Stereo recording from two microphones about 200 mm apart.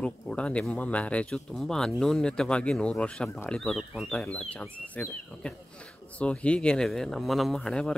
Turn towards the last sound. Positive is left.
turn(degrees=5)  # may be behind; listen again after turning